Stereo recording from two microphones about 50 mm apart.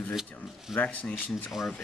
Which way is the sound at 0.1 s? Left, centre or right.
Centre.